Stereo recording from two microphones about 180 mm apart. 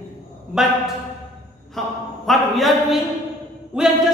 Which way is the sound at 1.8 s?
Centre (ahead or behind).